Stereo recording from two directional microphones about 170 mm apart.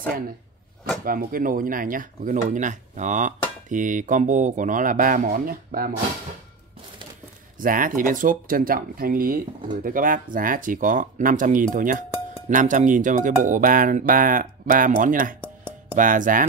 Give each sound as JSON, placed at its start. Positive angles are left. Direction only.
{"t": 1.0, "sound": "speech", "side_deg": -55}
{"t": 7.5, "sound": "speech", "side_deg": -55}